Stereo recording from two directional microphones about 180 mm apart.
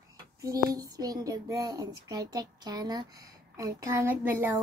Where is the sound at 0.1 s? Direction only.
20° right (ahead or behind).